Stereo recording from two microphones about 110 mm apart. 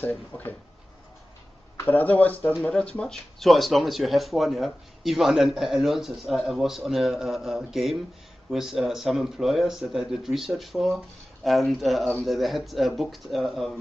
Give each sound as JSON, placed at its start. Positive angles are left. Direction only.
{"t": 0.0, "sound": "speech", "side_deg": 15}
{"t": 1.8, "sound": "speech", "side_deg": 15}
{"t": 2.5, "sound": "speech", "side_deg": 5}